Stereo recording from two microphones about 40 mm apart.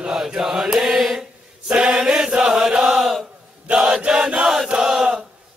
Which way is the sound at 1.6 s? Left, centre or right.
Right.